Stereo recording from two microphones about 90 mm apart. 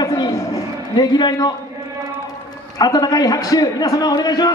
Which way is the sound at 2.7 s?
50° left (ahead or behind).